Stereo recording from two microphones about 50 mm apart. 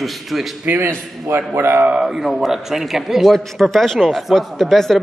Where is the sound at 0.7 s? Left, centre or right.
Right.